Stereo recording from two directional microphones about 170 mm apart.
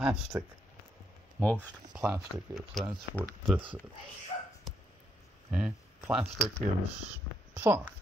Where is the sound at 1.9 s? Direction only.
5° right (ahead or behind).